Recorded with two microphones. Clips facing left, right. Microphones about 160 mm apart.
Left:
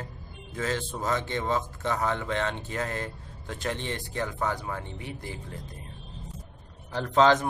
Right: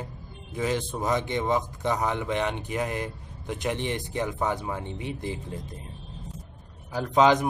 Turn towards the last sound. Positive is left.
turn(degrees=-15)  # may be behind; listen again after turning